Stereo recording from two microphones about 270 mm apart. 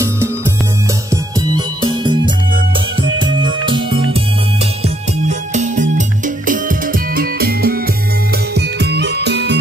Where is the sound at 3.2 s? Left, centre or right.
Centre.